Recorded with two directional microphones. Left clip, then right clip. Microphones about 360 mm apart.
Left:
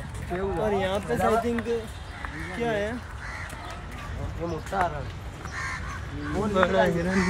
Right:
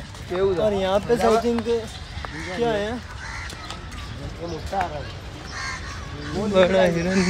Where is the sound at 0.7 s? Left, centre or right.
Centre.